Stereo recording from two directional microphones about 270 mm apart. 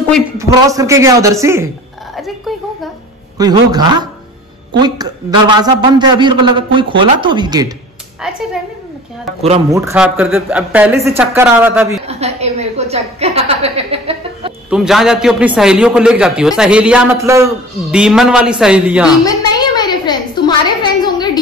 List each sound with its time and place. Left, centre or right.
0.4 s a woman's voice: centre
2.1 s a sound: centre
3.3 s a woman's voice: centre
9.7 s a woman's voice: centre
12.1 s a woman's voice: right
14.7 s a man's voice: centre
19.2 s a sound: centre